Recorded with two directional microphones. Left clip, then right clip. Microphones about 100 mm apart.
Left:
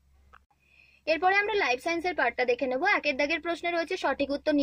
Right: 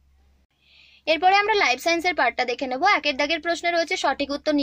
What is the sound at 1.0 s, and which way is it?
A woman's voice, 15° left (ahead or behind).